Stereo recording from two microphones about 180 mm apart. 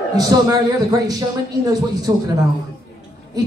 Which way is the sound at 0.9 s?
20° right (ahead or behind).